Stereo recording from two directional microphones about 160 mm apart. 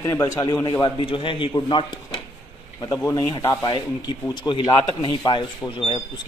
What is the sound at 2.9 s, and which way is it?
Speech, 20° left (ahead or behind).